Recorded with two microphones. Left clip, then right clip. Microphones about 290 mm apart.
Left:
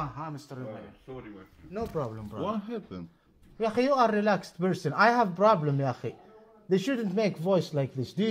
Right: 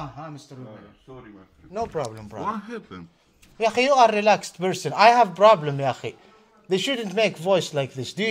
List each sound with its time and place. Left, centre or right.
1.8 s a man's voice: right
3.5 s a man's voice: right
5.0 s a man's voice: right
6.8 s a man's voice: right